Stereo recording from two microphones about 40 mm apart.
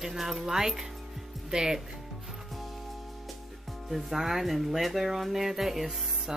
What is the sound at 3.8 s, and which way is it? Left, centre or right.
Speech, centre.